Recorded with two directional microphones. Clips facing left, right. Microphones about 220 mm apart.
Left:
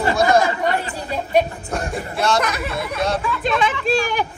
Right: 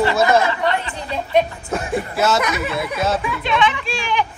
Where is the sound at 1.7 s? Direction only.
5° right (ahead or behind).